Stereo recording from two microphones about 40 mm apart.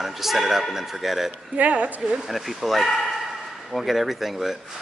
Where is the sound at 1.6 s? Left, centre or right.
Right.